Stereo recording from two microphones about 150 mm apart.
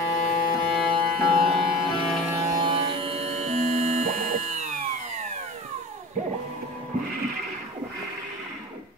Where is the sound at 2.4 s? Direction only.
25° right (ahead or behind); by 6.2 s 50° right (ahead or behind).